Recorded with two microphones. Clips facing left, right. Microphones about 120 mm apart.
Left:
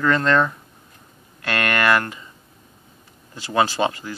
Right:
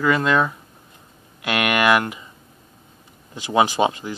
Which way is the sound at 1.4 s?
15° right (ahead or behind).